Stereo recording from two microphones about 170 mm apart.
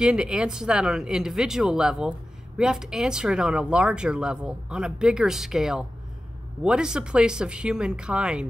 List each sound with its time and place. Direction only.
0.0 s speech: 5° right (ahead or behind)